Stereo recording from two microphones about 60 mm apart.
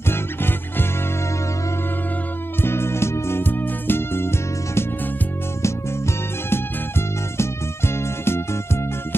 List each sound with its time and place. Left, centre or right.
0.1 s music: left
2.6 s music: left
6.5 s music: left